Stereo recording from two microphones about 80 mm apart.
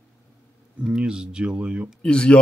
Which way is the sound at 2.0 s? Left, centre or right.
Centre.